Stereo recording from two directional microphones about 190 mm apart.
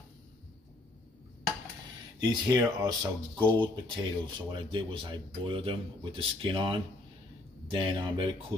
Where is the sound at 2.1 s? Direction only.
20° right (ahead or behind).